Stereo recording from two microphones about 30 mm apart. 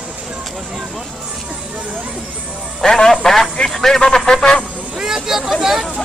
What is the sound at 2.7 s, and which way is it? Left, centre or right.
A man's voice, centre.